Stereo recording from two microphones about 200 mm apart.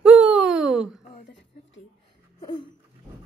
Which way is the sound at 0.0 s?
5° right (ahead or behind).